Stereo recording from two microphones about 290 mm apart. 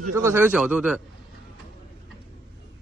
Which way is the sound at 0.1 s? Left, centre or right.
Centre.